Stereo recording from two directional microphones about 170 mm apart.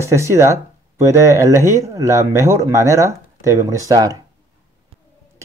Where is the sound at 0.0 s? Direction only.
15° right (ahead or behind).